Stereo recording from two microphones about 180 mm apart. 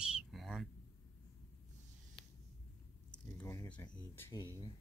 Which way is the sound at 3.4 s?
15° left (ahead or behind).